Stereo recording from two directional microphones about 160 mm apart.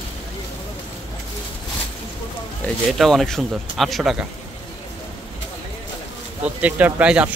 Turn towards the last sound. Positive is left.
turn(degrees=-5)  # may be behind; listen again after turning